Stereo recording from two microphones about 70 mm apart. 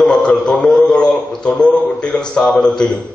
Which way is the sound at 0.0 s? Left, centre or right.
Centre.